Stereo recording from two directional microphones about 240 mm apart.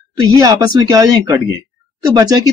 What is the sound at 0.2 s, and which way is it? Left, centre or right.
Speech, centre.